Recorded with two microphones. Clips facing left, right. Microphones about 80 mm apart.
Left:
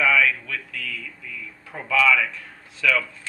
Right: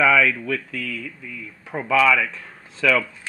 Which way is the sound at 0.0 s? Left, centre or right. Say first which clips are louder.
Right 3 dB; right.